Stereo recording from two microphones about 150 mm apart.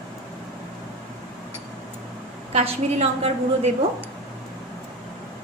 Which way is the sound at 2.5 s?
40° right (ahead or behind).